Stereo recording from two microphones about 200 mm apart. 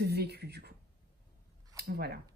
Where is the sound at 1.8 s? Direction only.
50° right (ahead or behind).